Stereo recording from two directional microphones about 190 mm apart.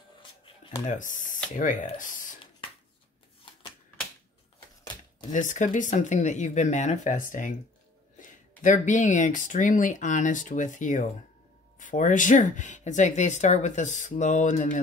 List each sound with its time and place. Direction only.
0.2 s a sound: 30° left (ahead or behind)
0.8 s speech: 40° left (ahead or behind)
5.3 s speech: 40° left (ahead or behind)